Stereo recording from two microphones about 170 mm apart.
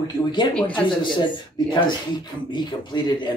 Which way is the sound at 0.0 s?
25° left (ahead or behind).